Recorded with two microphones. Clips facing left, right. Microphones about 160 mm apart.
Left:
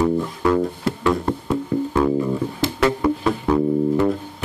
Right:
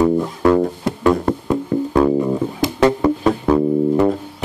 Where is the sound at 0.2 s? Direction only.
45° right (ahead or behind).